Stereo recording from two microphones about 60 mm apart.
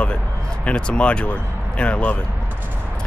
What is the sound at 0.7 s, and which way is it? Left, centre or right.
Speech, centre.